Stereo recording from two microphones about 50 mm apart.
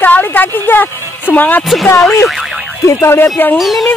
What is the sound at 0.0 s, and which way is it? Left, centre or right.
Music, left.